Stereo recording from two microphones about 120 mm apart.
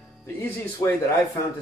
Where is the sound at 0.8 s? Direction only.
25° left (ahead or behind).